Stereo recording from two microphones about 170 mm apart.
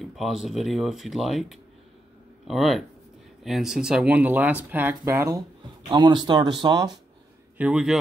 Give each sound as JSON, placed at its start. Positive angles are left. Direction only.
{"t": 0.0, "sound": "speech", "side_deg": 0}
{"t": 7.5, "sound": "speech", "side_deg": -5}